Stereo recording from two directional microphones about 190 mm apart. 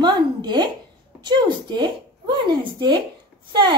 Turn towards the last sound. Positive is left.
turn(degrees=-25)  # may be behind; listen again after turning